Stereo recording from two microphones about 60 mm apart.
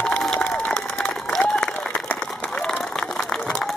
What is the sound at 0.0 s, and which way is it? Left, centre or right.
Applause, centre.